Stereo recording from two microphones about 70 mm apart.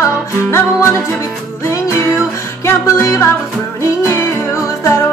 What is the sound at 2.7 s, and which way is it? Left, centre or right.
Music, left.